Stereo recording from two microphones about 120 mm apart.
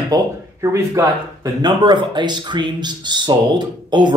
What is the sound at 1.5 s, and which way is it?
Speech, 35° right (ahead or behind).